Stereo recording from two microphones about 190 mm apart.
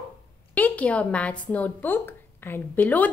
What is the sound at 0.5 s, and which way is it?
A woman's voice, 5° left (ahead or behind).